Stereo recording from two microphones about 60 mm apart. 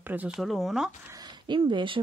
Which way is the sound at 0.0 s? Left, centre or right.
Right.